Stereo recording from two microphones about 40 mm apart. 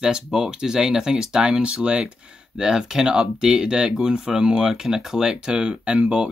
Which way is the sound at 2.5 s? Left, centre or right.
Centre.